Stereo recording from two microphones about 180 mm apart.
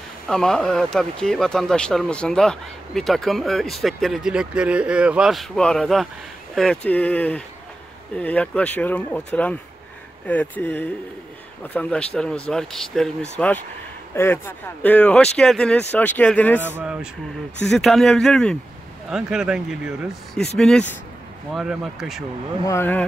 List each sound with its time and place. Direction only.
0.3 s speech: 5° left (ahead or behind)
16.6 s speech: 10° right (ahead or behind)
22.7 s speech: 10° left (ahead or behind)